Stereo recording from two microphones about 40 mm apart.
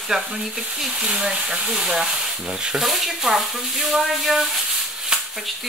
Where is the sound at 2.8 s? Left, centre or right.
Centre.